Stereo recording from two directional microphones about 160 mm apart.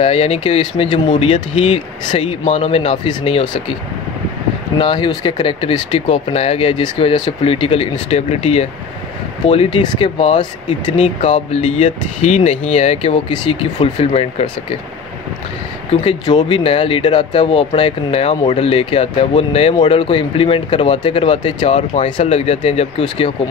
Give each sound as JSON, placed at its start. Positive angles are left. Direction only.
{"t": 0.0, "sound": "speech", "side_deg": 40}
{"t": 4.7, "sound": "speech", "side_deg": 30}
{"t": 15.9, "sound": "speech", "side_deg": 35}